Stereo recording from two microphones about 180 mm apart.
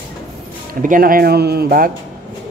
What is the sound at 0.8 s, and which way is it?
A man's voice, 50° right (ahead or behind).